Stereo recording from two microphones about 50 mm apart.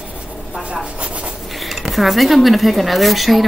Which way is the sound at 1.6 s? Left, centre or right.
Centre.